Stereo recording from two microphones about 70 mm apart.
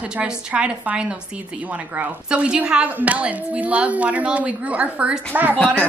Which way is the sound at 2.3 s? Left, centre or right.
Centre.